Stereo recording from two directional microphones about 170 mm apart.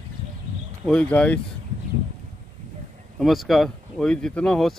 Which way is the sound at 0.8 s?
5° left (ahead or behind).